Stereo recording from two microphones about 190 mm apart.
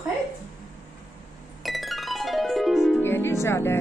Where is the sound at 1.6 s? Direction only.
Centre (ahead or behind).